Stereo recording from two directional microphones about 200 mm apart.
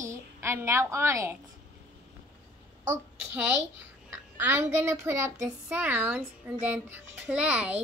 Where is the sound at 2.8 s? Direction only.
10° right (ahead or behind).